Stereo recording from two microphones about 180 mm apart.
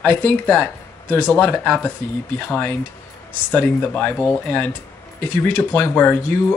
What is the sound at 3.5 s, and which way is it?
Speech, 10° left (ahead or behind).